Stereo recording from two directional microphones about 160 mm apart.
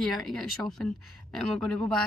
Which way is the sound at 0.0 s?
Centre (ahead or behind).